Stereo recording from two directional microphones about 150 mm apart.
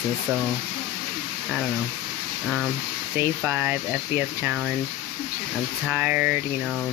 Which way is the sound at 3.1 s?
10° right (ahead or behind).